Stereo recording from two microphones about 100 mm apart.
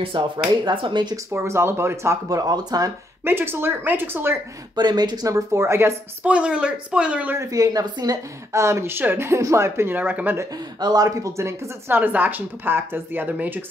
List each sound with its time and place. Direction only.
0.1 s speech: 55° right (ahead or behind)
1.1 s speech: 25° right (ahead or behind)
3.3 s speech: 20° right (ahead or behind)
4.7 s speech: 45° right (ahead or behind); by 5.9 s 25° right (ahead or behind)
6.2 s speech: 10° right (ahead or behind)
7.3 s speech: 35° right (ahead or behind)
8.5 s speech: 30° right (ahead or behind)
10.5 s speech: 40° right (ahead or behind); by 13.7 s 15° right (ahead or behind)